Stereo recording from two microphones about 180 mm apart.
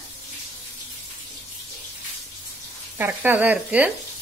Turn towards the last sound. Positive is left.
turn(degrees=-10)  # may be behind; listen again after turning